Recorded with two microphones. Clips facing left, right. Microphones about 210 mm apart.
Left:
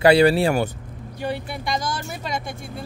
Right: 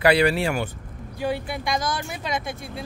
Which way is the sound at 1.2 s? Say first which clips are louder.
Right 1 dB; centre (ahead or behind).